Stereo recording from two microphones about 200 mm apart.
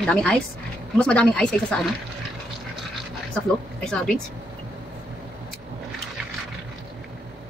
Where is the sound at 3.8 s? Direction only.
5° left (ahead or behind).